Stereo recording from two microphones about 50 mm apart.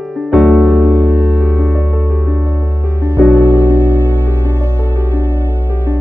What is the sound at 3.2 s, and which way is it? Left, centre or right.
Music, right.